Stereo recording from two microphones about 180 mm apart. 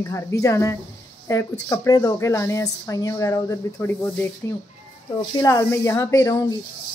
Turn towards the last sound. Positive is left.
turn(degrees=20)  # may be behind; listen again after turning